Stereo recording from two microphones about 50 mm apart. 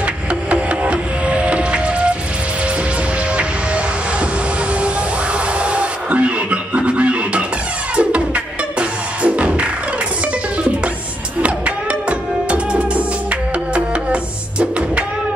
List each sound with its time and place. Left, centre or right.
0.0 s music: right
3.3 s train: right
4.7 s music: right
11.4 s music: right